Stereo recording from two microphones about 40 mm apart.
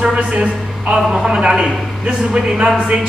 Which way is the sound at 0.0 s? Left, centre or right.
Right.